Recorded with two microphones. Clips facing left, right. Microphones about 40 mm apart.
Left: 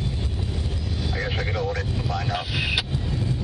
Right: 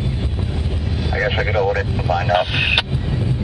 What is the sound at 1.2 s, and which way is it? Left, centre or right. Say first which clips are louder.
Vehicle: right 10 dB; right.